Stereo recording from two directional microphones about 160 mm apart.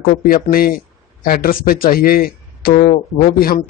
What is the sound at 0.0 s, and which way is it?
Speech, 65° left (ahead or behind).